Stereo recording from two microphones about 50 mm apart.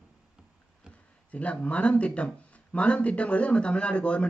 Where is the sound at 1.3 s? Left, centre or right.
Left.